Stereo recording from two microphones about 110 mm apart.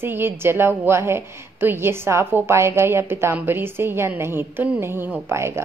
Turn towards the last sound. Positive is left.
turn(degrees=-25)  # may be behind; listen again after turning